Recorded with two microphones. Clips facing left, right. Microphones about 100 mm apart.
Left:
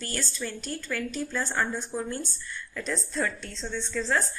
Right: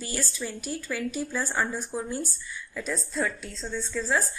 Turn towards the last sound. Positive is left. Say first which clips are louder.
# even
turn(degrees=-5)  # may be behind; listen again after turning